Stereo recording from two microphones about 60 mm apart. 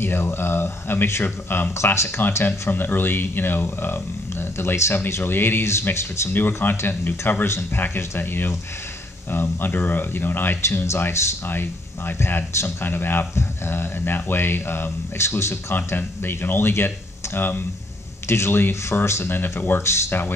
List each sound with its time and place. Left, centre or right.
0.0 s speech: left
4.9 s speech: left
6.3 s speech: left
7.4 s speech: left
15.7 s speech: left
19.2 s speech: left